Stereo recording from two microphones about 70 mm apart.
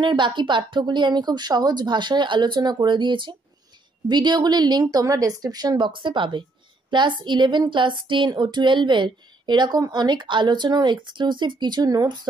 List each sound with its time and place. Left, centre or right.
0.0 s speech: right
5.0 s a woman's voice: right
6.9 s speech: right